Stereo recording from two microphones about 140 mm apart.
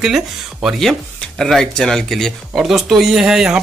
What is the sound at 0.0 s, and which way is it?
Speech, 5° right (ahead or behind).